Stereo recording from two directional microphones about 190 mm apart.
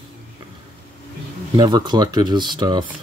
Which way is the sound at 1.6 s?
25° right (ahead or behind).